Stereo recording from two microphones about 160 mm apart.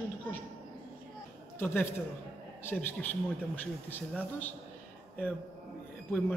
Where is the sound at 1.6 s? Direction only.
15° left (ahead or behind).